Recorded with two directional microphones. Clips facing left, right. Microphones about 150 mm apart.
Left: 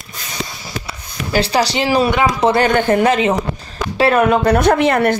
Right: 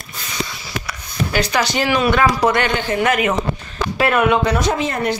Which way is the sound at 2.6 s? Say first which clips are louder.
Left 6 dB; 50° left (ahead or behind).